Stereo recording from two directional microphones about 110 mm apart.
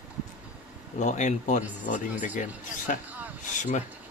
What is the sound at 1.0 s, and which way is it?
Speech, 90° left.